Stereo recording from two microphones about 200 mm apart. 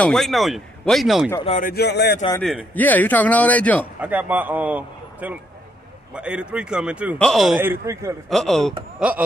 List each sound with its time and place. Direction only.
0.0 s speech: centre (ahead or behind)
1.6 s speech: 50° left (ahead or behind)
2.7 s speech: 10° left (ahead or behind)
4.0 s a man's voice: 10° right (ahead or behind)
7.8 s a man's voice: 15° right (ahead or behind)
8.3 s speech: centre (ahead or behind)